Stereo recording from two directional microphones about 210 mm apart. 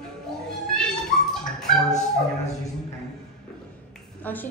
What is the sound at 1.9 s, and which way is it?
Speech, 35° left (ahead or behind).